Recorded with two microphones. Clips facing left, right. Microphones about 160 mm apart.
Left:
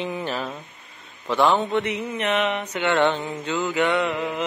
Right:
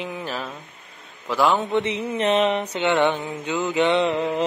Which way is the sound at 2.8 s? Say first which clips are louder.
Even; 15° right (ahead or behind).